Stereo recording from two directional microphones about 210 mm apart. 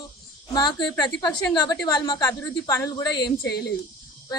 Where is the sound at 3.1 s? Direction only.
50° left (ahead or behind).